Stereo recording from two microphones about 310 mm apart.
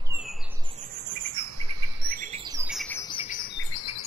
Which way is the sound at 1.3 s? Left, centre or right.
Right.